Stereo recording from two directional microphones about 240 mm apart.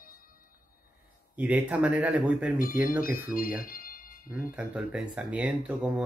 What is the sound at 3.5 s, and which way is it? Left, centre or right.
Music, left.